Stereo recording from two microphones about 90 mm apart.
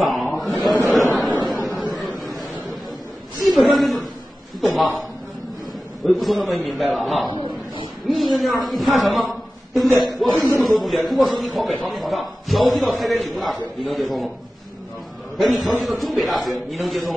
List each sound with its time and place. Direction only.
0.0 s a sound: centre (ahead or behind)
3.5 s a man's voice: centre (ahead or behind)
6.0 s a man's voice: centre (ahead or behind)
7.3 s a sound: 60° right (ahead or behind)
8.1 s a man's voice: centre (ahead or behind)
15.3 s a man's voice: centre (ahead or behind)